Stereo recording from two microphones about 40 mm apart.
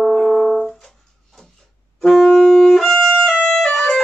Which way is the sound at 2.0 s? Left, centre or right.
Centre.